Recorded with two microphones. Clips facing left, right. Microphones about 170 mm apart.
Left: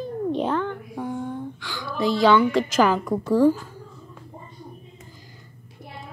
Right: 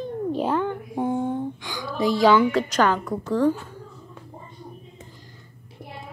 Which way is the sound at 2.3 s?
Centre (ahead or behind).